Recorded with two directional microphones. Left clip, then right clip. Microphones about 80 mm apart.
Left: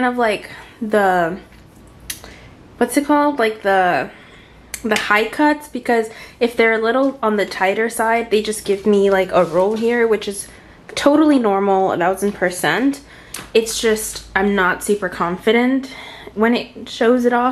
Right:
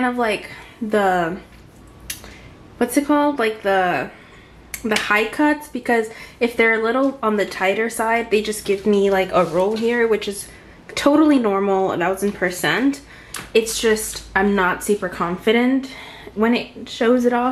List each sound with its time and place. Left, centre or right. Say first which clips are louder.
0.0 s speech: left 3 dB; left
2.8 s speech: left 2 dB; left